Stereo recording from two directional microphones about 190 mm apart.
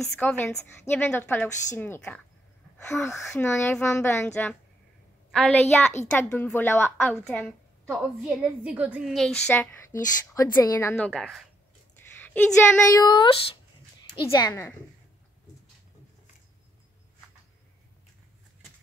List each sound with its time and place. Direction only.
0.0 s a woman's voice: 5° left (ahead or behind)
11.1 s a woman's voice: centre (ahead or behind); by 13.6 s 25° left (ahead or behind)
14.3 s a woman's voice: 15° left (ahead or behind)